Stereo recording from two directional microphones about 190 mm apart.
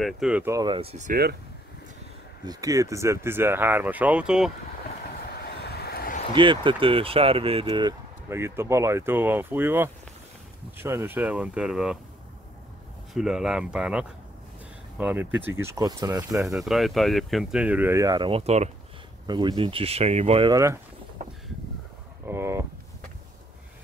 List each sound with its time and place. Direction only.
0.0 s speech: 5° right (ahead or behind)
0.7 s speech: 35° right (ahead or behind)
2.4 s speech: 20° right (ahead or behind)
5.4 s vehicle: 60° left (ahead or behind)
6.3 s speech: 25° right (ahead or behind)
8.3 s speech: 15° right (ahead or behind)
13.1 s speech: centre (ahead or behind); by 16.3 s 20° right (ahead or behind)
16.3 s speech: centre (ahead or behind); by 18.7 s 35° right (ahead or behind)
19.2 s speech: 25° right (ahead or behind)
20.5 s speech: 15° right (ahead or behind)
22.2 s a sound: 15° right (ahead or behind)